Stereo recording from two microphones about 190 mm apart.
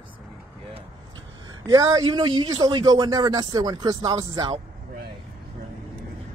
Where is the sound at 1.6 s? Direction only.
20° right (ahead or behind).